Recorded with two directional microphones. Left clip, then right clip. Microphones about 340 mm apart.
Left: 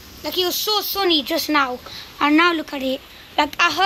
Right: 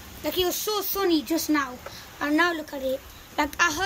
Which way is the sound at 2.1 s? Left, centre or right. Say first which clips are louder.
Left 7 dB; centre.